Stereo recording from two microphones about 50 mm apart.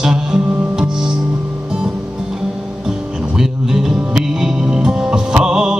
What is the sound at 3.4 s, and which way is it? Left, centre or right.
Music, centre.